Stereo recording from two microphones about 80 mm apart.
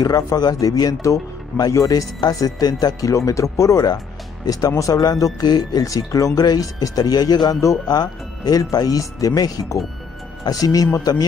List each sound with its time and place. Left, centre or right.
0.4 s speech: left